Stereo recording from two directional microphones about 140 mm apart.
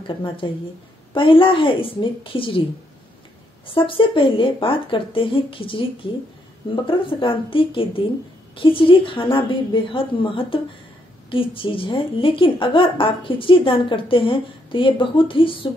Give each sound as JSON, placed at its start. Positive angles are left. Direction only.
{"t": 0.0, "sound": "speech", "side_deg": 40}
{"t": 3.6, "sound": "speech", "side_deg": 40}